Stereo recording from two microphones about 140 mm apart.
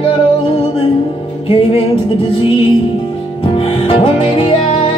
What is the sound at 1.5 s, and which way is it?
Music, 45° left (ahead or behind).